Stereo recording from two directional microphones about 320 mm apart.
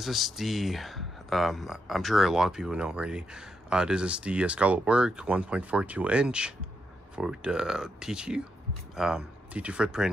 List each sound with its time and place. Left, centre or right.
0.0 s speech: centre